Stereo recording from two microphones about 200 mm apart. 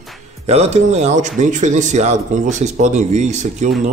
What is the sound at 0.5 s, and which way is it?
Speech, 35° right (ahead or behind).